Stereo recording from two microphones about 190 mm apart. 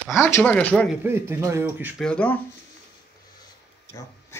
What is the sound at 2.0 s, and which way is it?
Speech, 5° left (ahead or behind).